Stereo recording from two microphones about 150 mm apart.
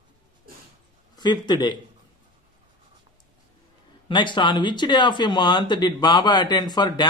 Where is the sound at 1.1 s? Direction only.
30° left (ahead or behind).